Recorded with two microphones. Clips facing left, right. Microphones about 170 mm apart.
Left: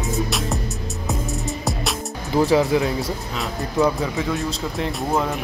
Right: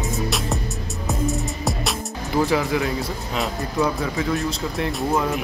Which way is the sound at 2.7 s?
25° left (ahead or behind).